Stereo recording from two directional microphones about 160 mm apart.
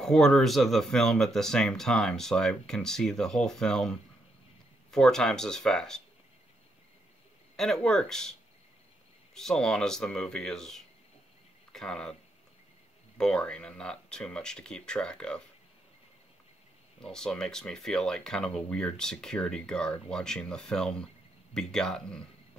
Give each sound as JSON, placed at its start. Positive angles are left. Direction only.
{"t": 0.0, "sound": "speech", "side_deg": 5}
{"t": 4.9, "sound": "speech", "side_deg": 5}
{"t": 7.5, "sound": "speech", "side_deg": 0}
{"t": 13.2, "sound": "speech", "side_deg": 5}
{"t": 17.0, "sound": "speech", "side_deg": 5}